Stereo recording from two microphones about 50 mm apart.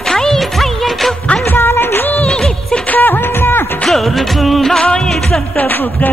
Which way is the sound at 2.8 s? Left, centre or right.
Left.